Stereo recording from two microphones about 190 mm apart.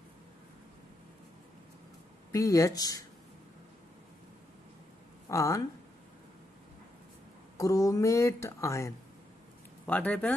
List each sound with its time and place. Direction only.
2.3 s speech: 15° left (ahead or behind)
5.3 s speech: 15° left (ahead or behind)
7.5 s speech: 15° left (ahead or behind)